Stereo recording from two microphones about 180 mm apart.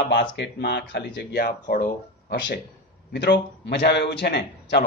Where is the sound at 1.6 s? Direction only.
45° left (ahead or behind).